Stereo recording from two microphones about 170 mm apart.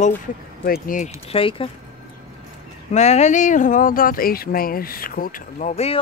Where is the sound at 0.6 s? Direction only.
55° left (ahead or behind).